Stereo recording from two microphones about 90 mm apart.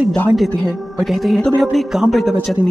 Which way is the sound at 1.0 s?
Centre (ahead or behind).